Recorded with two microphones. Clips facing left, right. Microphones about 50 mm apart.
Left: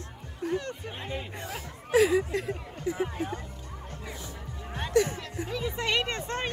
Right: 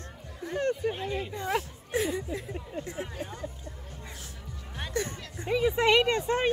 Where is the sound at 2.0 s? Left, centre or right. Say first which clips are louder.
Left 6 dB; left.